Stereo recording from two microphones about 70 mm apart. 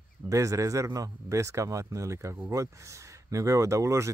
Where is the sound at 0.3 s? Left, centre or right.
Right.